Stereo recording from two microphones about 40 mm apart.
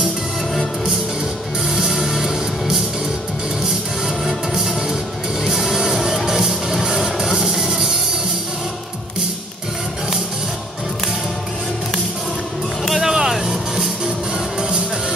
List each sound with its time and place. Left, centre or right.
1.7 s music: centre
4.6 s music: centre
7.3 s a sound: centre
13.0 s music: centre